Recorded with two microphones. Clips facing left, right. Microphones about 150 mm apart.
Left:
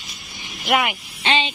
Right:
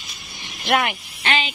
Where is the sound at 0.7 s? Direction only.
5° left (ahead or behind).